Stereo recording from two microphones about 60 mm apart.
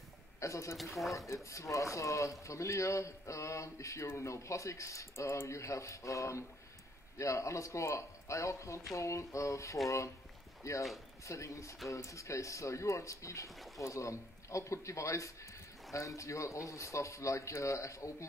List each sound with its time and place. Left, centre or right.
0.4 s speech: left
0.7 s speech: centre
1.1 s speech: left